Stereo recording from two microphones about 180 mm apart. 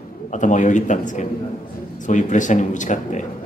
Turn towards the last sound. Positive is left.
turn(degrees=45)  # may be behind; listen again after turning